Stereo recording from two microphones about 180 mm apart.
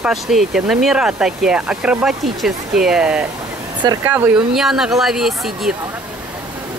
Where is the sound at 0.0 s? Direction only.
Centre (ahead or behind).